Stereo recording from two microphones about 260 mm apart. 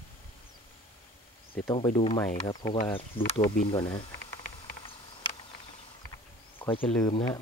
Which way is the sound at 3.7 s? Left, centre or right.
Centre.